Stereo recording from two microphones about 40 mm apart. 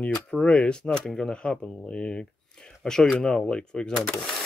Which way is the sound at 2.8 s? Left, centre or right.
Centre.